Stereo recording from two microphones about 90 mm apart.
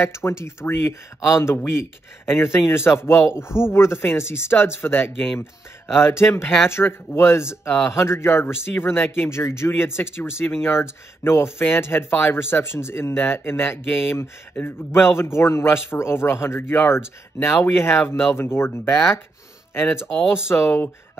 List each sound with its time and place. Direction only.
0.0 s speech: 30° left (ahead or behind)
20.4 s speech: 25° left (ahead or behind)